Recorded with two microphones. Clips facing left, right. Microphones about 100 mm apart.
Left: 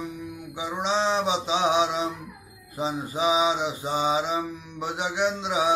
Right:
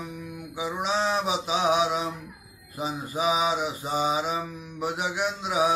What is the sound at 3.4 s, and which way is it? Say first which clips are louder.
Mantra: left 2 dB; 25° left (ahead or behind).